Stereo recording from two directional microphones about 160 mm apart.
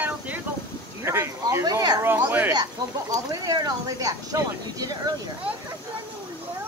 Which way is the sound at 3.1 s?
25° right (ahead or behind).